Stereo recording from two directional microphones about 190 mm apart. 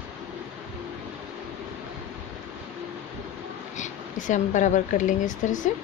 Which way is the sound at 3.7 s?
40° left (ahead or behind).